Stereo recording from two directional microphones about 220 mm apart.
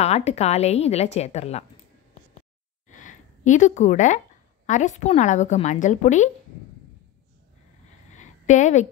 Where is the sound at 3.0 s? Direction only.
35° left (ahead or behind).